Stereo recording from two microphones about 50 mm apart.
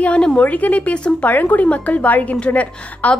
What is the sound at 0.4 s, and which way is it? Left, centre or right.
Speech, left.